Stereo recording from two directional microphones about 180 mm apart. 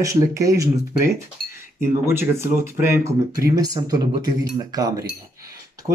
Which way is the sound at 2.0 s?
15° right (ahead or behind).